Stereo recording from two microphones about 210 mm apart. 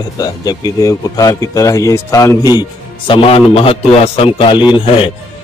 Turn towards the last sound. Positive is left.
turn(degrees=25)  # may be behind; listen again after turning